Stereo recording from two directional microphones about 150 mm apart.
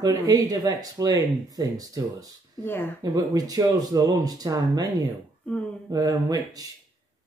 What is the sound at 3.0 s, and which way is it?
Speech, 25° right (ahead or behind).